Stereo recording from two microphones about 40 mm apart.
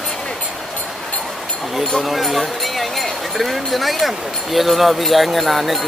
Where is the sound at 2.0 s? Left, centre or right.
Centre.